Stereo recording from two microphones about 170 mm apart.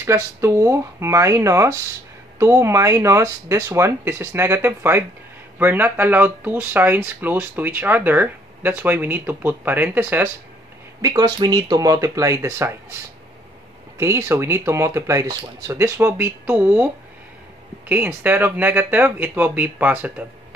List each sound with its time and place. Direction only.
0.0 s speech: 15° right (ahead or behind)
11.0 s speech: 20° right (ahead or behind)
13.9 s speech: 15° right (ahead or behind)